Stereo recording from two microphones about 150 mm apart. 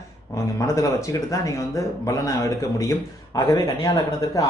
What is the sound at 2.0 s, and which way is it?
Speech, 20° left (ahead or behind).